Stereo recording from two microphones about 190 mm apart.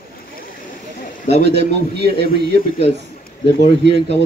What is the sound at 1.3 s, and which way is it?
Speech, 60° right (ahead or behind).